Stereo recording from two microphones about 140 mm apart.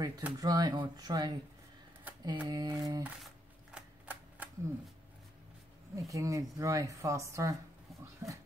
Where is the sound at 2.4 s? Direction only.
25° right (ahead or behind).